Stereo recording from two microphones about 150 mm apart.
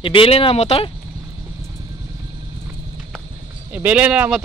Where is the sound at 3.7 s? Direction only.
10° right (ahead or behind).